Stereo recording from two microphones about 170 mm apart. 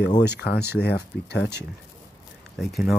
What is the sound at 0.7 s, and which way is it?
Speech, 75° left (ahead or behind).